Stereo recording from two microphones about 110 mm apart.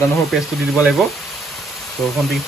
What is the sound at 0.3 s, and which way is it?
Speech, 10° right (ahead or behind).